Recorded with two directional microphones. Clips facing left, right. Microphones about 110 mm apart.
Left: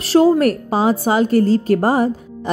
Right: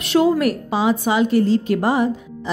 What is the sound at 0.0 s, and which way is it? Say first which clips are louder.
A woman's voice: left 4 dB; 35° left (ahead or behind).